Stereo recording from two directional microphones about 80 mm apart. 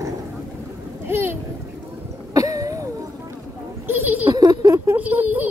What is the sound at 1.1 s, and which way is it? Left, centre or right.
Speech, right.